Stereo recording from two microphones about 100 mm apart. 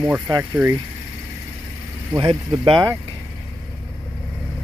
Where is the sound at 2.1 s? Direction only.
60° right (ahead or behind).